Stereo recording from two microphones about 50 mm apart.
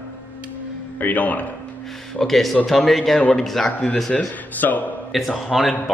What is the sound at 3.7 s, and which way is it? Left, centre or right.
A man's voice, left.